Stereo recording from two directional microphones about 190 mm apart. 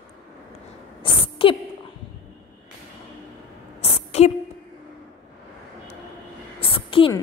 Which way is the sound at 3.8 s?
35° left (ahead or behind).